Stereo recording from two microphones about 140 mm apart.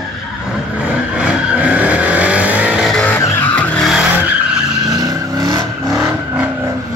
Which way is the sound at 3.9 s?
10° right (ahead or behind).